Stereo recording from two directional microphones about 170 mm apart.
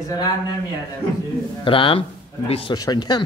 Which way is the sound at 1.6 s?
30° left (ahead or behind).